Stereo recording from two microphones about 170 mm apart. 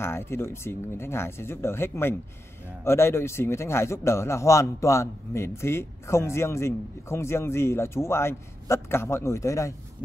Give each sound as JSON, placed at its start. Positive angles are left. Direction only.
{"t": 0.0, "sound": "a man's voice", "side_deg": 15}